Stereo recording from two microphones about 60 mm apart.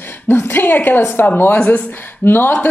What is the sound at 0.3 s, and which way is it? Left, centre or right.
A woman's voice, left.